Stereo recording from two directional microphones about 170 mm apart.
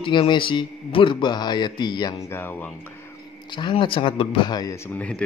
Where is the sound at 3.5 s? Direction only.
25° left (ahead or behind).